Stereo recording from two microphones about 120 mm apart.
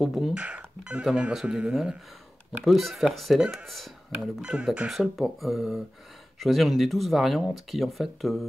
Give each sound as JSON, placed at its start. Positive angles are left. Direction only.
{"t": 0.0, "sound": "speech", "side_deg": 0}
{"t": 0.4, "sound": "speech", "side_deg": -10}